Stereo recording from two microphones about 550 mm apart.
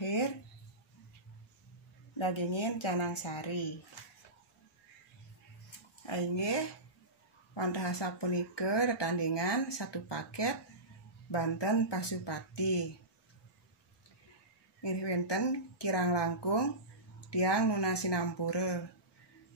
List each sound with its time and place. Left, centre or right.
0.0 s a sound: left
2.1 s a woman's voice: left
6.0 s speech: left
14.8 s speech: left